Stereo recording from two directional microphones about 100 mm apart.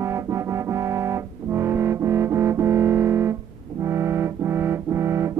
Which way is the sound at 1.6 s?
25° right (ahead or behind).